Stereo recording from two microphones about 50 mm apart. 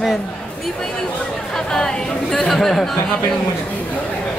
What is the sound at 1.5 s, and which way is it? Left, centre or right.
Speech, centre.